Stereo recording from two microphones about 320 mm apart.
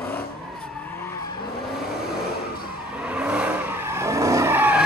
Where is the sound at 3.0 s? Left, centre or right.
Centre.